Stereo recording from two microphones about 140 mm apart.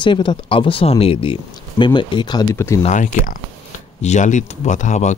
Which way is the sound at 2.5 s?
20° left (ahead or behind).